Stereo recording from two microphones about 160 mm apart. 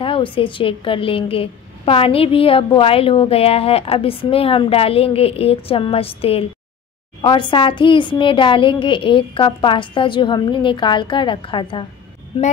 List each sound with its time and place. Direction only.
0.0 s a woman's voice: 35° left (ahead or behind)